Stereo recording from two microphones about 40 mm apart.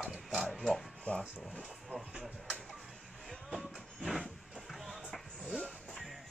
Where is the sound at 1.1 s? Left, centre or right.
Left.